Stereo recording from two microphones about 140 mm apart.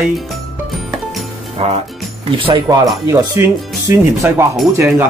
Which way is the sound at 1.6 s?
45° right (ahead or behind).